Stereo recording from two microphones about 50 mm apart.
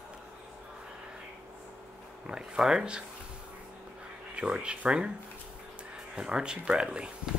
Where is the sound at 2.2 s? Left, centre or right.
Centre.